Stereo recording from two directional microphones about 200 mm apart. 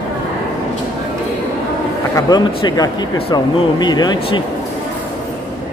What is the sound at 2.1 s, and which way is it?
Speech, 20° left (ahead or behind).